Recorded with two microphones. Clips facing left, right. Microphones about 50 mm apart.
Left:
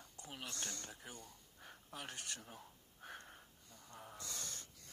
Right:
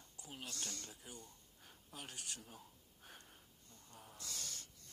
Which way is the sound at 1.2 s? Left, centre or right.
Left.